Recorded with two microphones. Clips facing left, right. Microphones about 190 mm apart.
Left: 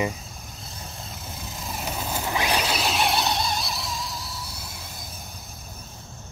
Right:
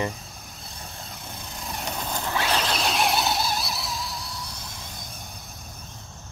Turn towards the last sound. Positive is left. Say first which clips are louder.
# even
turn(degrees=5)  # may be behind; listen again after turning